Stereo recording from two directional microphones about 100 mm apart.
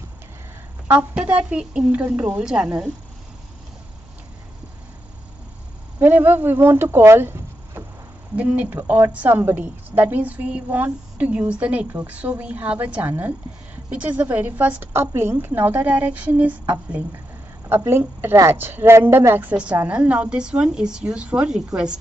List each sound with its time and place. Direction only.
1.1 s a woman's voice: 10° right (ahead or behind)
5.9 s a woman's voice: 20° right (ahead or behind)
19.5 s a woman's voice: 10° right (ahead or behind)